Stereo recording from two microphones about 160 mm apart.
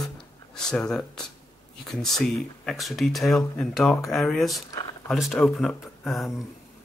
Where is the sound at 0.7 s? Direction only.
5° left (ahead or behind).